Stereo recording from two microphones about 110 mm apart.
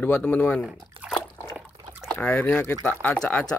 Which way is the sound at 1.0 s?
Centre (ahead or behind).